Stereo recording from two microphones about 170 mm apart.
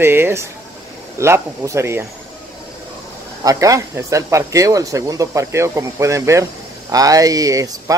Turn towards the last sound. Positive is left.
turn(degrees=-20)  # may be behind; listen again after turning